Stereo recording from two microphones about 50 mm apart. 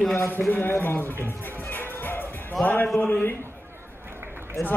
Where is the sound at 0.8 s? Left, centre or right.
Left.